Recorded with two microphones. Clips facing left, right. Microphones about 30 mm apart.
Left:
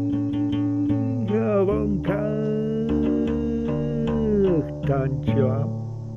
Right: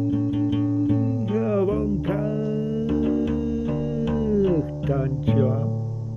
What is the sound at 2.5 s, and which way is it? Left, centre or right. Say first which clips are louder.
Music: left 1 dB; centre.